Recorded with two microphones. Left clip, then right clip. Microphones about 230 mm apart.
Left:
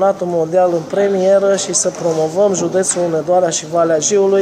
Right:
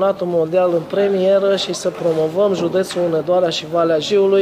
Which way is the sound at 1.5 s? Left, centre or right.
Right.